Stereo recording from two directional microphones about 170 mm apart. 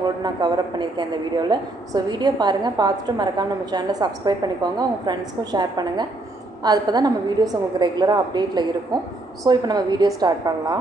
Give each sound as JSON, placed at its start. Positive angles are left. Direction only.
{"t": 0.0, "sound": "a woman's voice", "side_deg": -25}